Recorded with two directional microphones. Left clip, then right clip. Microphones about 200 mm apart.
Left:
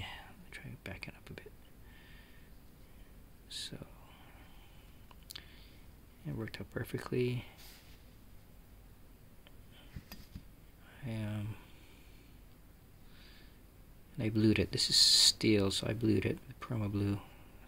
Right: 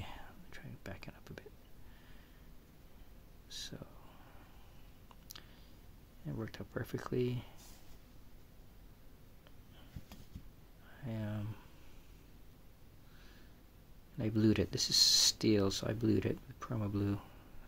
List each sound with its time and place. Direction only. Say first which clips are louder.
0.0 s whispering: left 4 dB; centre (ahead or behind)
3.4 s whispering: left 3 dB; centre (ahead or behind)
6.2 s speech: left 2 dB; centre (ahead or behind)
10.9 s a sound: left 1 dB; centre (ahead or behind)
14.1 s speech: left 2 dB; centre (ahead or behind)